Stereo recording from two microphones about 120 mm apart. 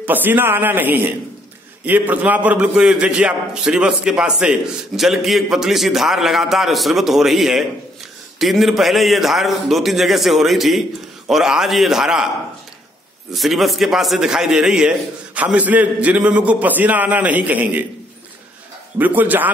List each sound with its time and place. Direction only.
0.0 s a man's voice: 15° right (ahead or behind)
13.3 s a man's voice: centre (ahead or behind)
18.9 s a man's voice: 15° right (ahead or behind)